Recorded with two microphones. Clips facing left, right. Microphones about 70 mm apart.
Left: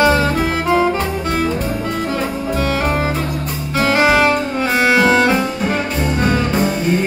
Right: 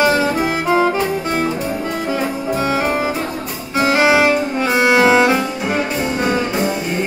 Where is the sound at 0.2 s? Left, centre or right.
Centre.